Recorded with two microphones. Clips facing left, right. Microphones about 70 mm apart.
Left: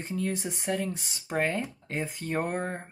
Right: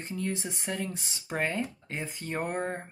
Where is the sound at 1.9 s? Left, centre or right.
Centre.